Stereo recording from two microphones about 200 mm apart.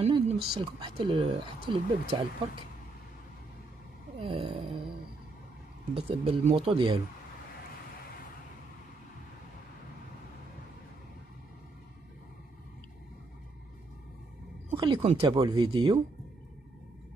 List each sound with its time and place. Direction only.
0.0 s speech: 25° right (ahead or behind)
4.2 s wail: 25° right (ahead or behind)
5.9 s speech: 25° right (ahead or behind)
14.8 s speech: 25° right (ahead or behind)